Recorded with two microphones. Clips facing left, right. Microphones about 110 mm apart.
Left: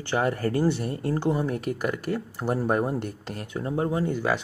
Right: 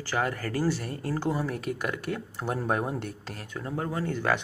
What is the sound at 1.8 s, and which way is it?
Speech, 5° left (ahead or behind).